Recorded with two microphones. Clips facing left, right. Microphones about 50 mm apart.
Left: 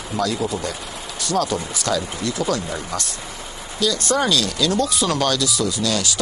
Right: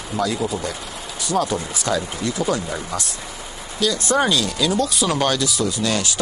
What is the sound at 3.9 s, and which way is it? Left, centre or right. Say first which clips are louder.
Speech: right 1 dB; right.